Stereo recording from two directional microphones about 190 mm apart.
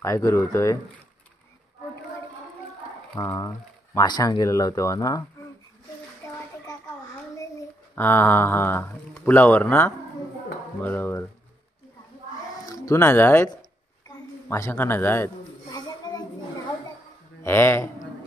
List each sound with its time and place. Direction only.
0.0 s speech: 15° left (ahead or behind)
3.2 s speech: 15° left (ahead or behind)
7.9 s speech: 10° left (ahead or behind)
12.6 s a sound: 15° left (ahead or behind)
17.4 s speech: 15° left (ahead or behind)